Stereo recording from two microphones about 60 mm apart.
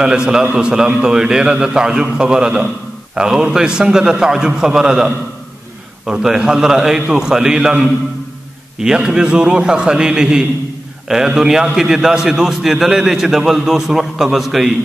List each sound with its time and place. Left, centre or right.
0.0 s a man's voice: centre
8.7 s a man's voice: centre